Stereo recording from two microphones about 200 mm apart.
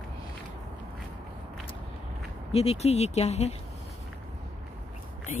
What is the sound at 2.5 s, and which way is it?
Speech, 30° left (ahead or behind).